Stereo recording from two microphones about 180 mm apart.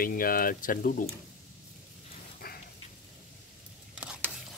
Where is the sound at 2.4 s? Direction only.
55° left (ahead or behind).